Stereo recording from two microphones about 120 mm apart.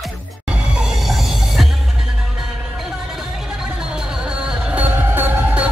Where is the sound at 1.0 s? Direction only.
Centre (ahead or behind).